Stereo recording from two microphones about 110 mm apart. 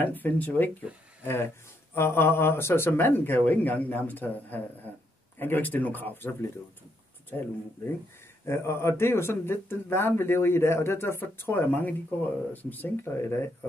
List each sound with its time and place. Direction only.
0.0 s speech: 15° left (ahead or behind)
0.9 s speech: 10° right (ahead or behind)
1.2 s speech: 20° left (ahead or behind)